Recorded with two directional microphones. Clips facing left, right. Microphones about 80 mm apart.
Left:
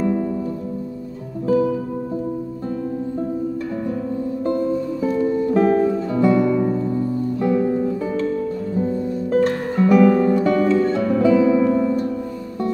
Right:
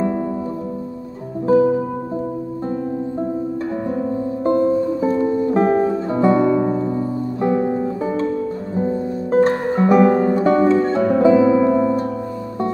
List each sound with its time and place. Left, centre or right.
1.5 s music: right
4.5 s music: right